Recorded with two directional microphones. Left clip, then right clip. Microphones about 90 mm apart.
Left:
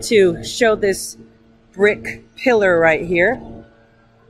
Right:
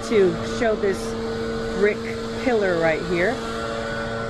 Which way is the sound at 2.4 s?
30° left (ahead or behind).